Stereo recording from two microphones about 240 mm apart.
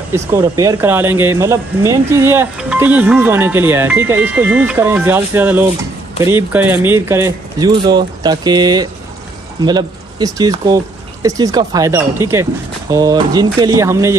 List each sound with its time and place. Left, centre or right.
0.1 s speech: centre